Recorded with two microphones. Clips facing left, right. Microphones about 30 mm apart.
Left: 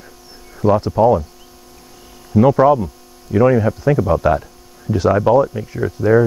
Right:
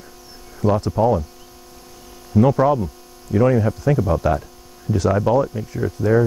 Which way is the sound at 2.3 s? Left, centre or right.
Centre.